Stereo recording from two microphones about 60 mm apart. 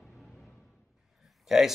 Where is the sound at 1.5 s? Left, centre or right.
Centre.